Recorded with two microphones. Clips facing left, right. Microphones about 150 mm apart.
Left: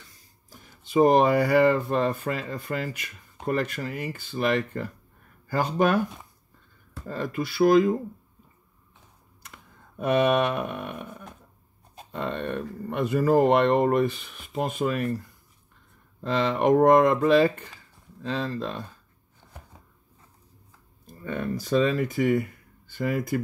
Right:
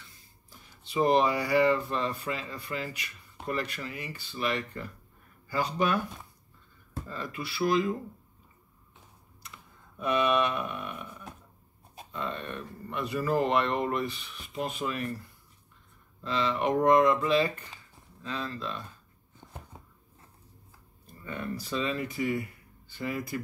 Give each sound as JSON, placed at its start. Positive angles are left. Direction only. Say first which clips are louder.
{"t": 0.5, "sound": "speech", "louder": "left 9 dB", "side_deg": 45}
{"t": 7.1, "sound": "speech", "louder": "left 9 dB", "side_deg": 45}
{"t": 9.9, "sound": "speech", "louder": "left 5 dB", "side_deg": 50}
{"t": 21.2, "sound": "speech", "louder": "left 6 dB", "side_deg": 50}